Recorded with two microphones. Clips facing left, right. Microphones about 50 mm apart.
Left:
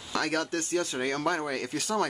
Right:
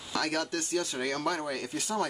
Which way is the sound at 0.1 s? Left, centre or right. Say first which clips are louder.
Left 2 dB; left.